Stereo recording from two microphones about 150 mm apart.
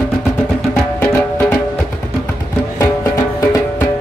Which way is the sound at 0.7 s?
10° left (ahead or behind).